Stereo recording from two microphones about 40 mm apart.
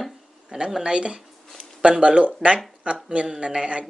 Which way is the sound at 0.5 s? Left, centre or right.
Centre.